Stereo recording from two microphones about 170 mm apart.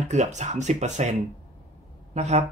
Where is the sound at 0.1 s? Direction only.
45° right (ahead or behind).